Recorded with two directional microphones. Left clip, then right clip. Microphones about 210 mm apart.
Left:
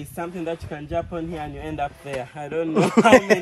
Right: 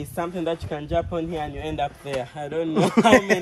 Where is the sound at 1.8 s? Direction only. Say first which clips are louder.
Left 1 dB; 15° left (ahead or behind).